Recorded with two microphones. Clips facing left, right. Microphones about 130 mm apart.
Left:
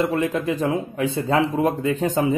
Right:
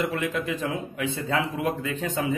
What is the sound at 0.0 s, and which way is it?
Speech, 35° left (ahead or behind).